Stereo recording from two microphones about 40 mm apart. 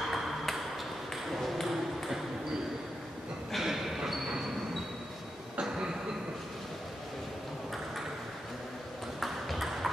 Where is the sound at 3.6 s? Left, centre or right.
Centre.